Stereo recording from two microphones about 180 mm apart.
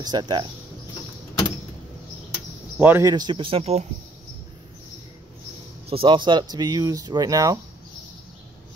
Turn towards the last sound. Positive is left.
turn(degrees=-20)  # may be behind; listen again after turning